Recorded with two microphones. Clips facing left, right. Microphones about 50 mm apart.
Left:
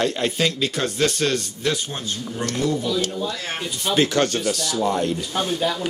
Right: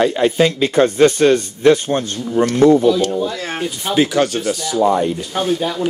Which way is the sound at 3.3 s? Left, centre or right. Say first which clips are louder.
Right 5 dB; right.